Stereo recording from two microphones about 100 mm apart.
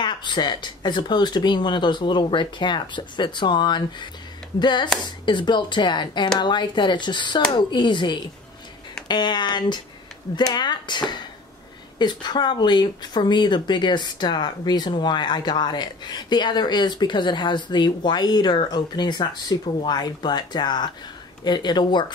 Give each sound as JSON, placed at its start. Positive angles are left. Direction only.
{"t": 0.0, "sound": "speech", "side_deg": 50}